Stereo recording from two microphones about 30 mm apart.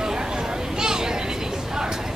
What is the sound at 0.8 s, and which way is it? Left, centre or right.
Vehicle, right.